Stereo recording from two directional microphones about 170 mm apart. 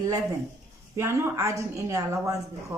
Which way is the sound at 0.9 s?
15° right (ahead or behind).